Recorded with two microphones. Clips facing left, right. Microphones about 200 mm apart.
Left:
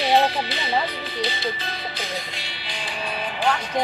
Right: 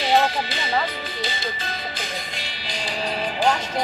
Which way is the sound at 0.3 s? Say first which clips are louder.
Even; 45° right (ahead or behind).